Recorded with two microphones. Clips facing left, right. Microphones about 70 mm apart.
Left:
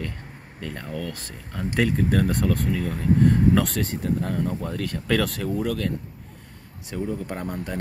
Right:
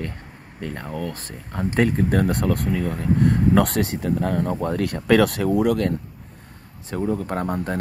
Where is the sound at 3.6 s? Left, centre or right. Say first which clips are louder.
Right 4 dB; right.